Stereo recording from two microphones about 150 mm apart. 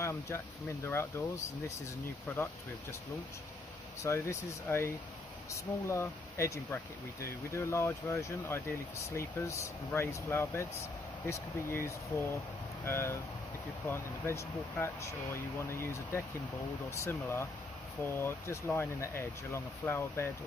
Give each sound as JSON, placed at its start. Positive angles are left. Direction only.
{"t": 0.0, "sound": "speech", "side_deg": 20}
{"t": 4.0, "sound": "speech", "side_deg": 20}